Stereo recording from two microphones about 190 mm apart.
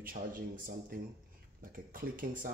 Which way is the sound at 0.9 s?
50° right (ahead or behind).